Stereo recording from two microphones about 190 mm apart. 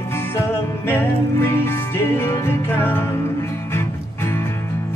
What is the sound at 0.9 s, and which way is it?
Music, 10° left (ahead or behind).